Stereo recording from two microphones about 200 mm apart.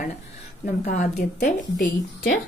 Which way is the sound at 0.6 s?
35° left (ahead or behind).